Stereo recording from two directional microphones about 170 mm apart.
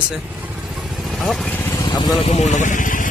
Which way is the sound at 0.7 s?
Centre (ahead or behind).